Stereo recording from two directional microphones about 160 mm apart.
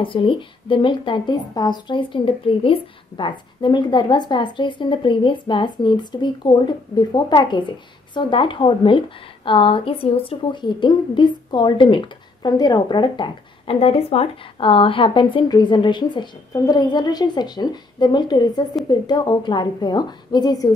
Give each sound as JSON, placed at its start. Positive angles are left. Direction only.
{"t": 0.0, "sound": "a woman's voice", "side_deg": 30}